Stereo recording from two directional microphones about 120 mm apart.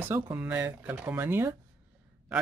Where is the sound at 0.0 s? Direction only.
20° right (ahead or behind).